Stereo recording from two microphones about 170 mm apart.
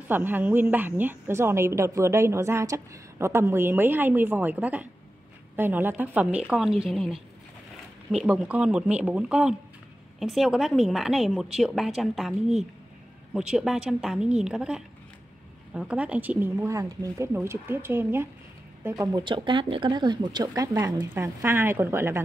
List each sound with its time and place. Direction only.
0.1 s a woman's voice: 10° right (ahead or behind)